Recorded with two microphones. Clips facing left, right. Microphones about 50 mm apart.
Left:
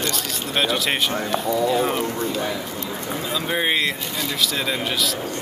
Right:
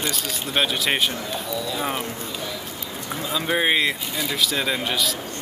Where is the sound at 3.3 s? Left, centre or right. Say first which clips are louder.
Right 2 dB; centre.